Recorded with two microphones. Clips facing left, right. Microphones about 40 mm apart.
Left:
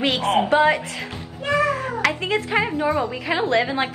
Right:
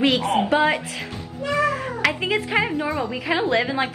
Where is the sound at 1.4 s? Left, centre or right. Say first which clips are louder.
Left 1 dB; left.